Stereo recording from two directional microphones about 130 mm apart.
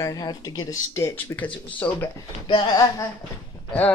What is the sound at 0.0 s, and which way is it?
Speech, 30° left (ahead or behind).